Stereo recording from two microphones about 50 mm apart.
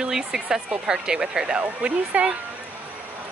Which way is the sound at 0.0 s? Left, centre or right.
Centre.